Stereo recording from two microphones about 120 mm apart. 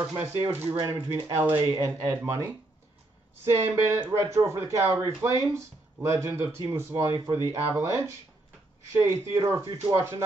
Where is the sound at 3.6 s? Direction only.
20° right (ahead or behind).